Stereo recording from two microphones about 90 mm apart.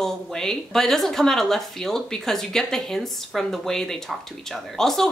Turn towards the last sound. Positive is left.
turn(degrees=5)  # may be behind; listen again after turning